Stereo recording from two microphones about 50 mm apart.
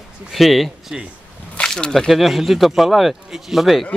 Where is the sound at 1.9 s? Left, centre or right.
Centre.